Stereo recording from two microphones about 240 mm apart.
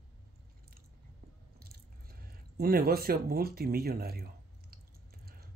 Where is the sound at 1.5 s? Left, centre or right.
Right.